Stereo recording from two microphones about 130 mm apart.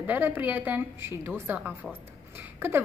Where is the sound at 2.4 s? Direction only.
15° right (ahead or behind).